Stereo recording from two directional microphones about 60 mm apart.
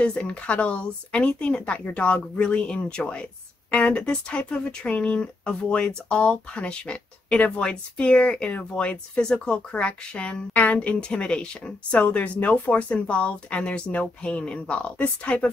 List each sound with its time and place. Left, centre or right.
0.0 s a woman's voice: centre